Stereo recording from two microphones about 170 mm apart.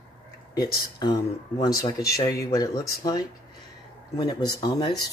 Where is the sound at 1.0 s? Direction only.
25° left (ahead or behind).